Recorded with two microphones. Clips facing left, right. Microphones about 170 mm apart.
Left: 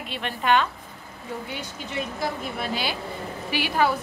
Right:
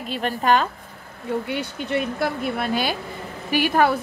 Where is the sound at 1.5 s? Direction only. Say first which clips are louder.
Right 9 dB; 60° right (ahead or behind).